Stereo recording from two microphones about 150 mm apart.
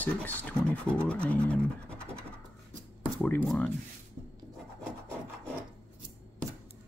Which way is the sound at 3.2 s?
5° left (ahead or behind).